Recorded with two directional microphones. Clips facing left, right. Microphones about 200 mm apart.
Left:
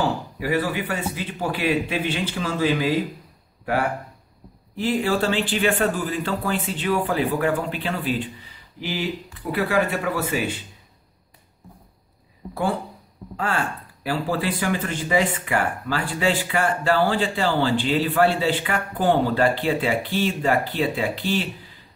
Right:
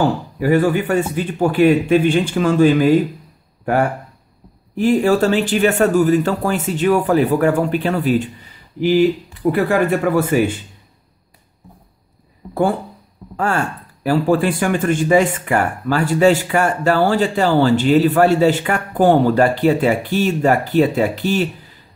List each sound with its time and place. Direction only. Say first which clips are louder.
0.4 s speech: right 10 dB; 45° right (ahead or behind)
4.7 s speech: right 8 dB; 45° right (ahead or behind)
13.4 s speech: right 6 dB; 45° right (ahead or behind)